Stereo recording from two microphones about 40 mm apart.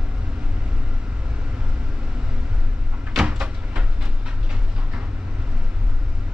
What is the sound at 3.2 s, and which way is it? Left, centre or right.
Door, right.